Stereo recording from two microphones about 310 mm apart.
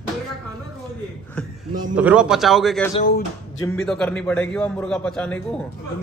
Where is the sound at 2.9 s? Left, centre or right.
Left.